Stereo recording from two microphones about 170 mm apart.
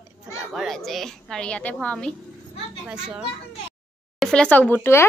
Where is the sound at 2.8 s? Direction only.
5° right (ahead or behind).